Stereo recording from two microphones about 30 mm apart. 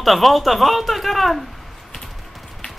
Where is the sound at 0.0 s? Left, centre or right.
Centre.